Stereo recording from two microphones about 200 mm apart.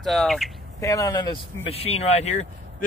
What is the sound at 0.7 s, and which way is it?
Speech, 15° left (ahead or behind).